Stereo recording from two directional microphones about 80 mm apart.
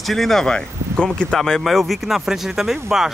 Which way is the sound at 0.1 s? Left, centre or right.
Centre.